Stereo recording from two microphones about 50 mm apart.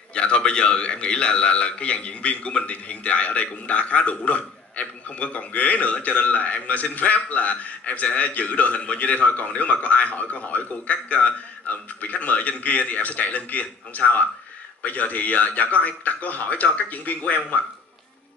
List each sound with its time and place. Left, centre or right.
0.1 s a man's voice: left